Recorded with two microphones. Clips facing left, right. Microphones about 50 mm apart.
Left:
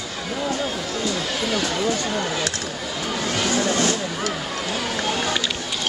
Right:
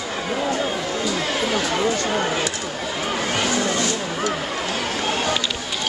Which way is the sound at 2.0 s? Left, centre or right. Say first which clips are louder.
Right 2 dB; right.